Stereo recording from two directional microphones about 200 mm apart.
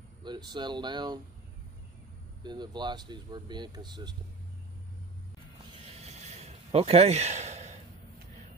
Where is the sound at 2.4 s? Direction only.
20° right (ahead or behind).